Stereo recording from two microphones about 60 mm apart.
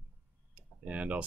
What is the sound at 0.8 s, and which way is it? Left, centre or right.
Speech, right.